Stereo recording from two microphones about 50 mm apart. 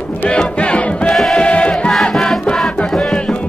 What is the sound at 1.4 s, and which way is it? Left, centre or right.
Choir, left.